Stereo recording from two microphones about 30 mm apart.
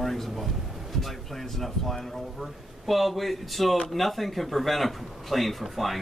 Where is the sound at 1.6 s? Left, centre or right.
Centre.